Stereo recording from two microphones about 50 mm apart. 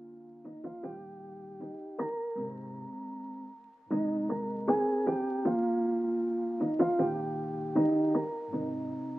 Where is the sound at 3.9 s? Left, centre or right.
Centre.